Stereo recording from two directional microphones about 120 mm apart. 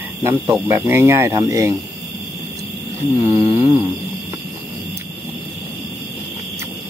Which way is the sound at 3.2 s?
25° right (ahead or behind).